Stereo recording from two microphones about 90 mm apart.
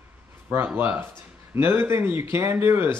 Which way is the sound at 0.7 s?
25° right (ahead or behind).